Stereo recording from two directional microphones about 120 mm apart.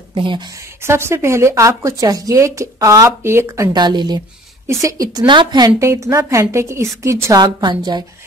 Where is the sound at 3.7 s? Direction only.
35° right (ahead or behind).